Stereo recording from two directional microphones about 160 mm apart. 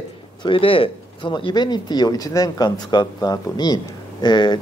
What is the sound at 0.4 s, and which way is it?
Speech, 35° left (ahead or behind).